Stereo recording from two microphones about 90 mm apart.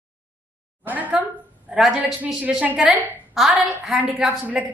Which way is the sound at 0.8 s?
15° right (ahead or behind).